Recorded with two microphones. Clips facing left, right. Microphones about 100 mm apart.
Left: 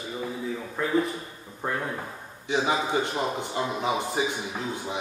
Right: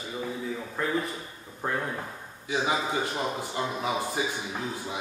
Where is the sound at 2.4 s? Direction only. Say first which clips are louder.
Left 2 dB; 25° left (ahead or behind).